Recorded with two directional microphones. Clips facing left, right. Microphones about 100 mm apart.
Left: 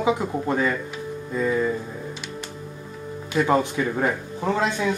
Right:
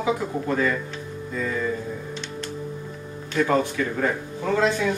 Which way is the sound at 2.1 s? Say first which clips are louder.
Right 2 dB; 10° left (ahead or behind).